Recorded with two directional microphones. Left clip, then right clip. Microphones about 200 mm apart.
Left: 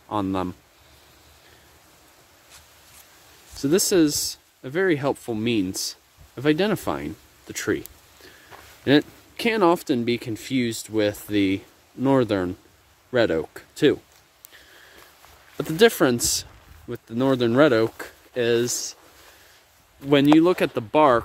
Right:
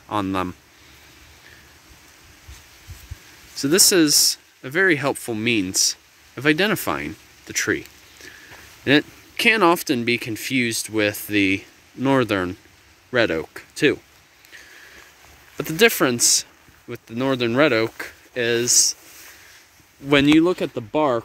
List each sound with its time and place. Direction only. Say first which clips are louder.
0.1 s speech: right 2 dB; 5° left (ahead or behind)
3.5 s speech: right 3 dB; 5° left (ahead or behind)
7.5 s a sound: right 4 dB; 15° left (ahead or behind)
8.8 s speech: right 1 dB; 5° left (ahead or behind)
15.5 s speech: right 1 dB; 15° left (ahead or behind)
20.1 s speech: right 1 dB; 10° left (ahead or behind)